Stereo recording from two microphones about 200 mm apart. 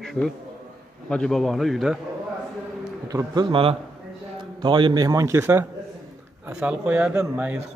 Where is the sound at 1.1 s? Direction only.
5° left (ahead or behind).